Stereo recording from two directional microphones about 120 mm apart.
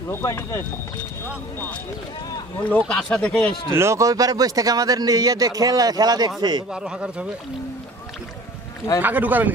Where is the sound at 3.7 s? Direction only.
25° right (ahead or behind).